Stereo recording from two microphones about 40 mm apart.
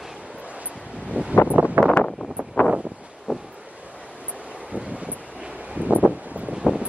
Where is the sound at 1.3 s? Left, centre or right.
Right.